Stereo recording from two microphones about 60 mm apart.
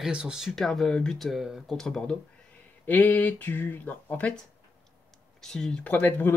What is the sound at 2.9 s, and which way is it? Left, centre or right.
Speech, left.